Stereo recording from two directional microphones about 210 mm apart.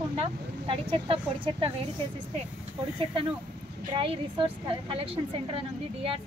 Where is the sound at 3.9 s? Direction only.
25° right (ahead or behind).